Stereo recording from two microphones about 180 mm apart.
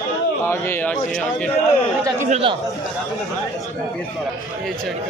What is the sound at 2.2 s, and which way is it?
Speech, 40° right (ahead or behind).